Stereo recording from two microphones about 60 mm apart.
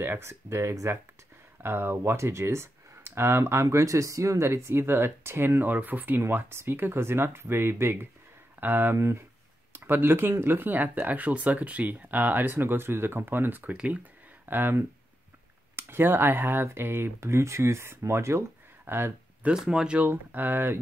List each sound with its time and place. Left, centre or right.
0.2 s speech: right
3.6 s speech: right
6.2 s speech: right
19.5 s speech: centre
20.0 s speech: right